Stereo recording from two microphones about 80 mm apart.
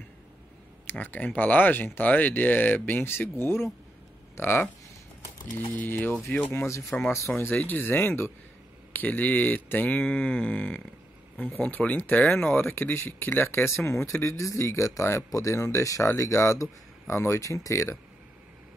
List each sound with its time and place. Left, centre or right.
0.8 s speech: left
5.8 s speech: left